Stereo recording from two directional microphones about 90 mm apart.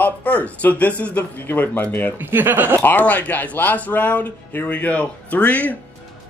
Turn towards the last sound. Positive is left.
turn(degrees=15)  # may be behind; listen again after turning